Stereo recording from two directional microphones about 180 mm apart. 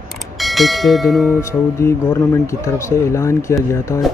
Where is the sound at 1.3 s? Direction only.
15° left (ahead or behind).